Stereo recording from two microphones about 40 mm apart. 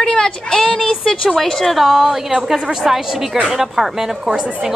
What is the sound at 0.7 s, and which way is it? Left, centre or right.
A woman's voice, centre.